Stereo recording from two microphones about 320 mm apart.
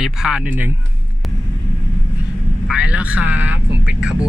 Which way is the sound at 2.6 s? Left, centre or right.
Centre.